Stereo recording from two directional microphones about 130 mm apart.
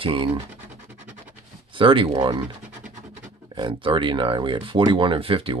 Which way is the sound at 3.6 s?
40° right (ahead or behind).